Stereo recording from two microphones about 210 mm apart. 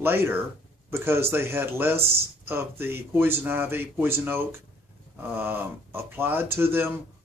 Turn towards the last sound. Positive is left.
turn(degrees=-10)  # may be behind; listen again after turning